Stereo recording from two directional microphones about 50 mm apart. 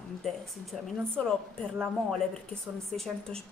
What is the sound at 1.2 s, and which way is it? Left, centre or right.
Speech, centre.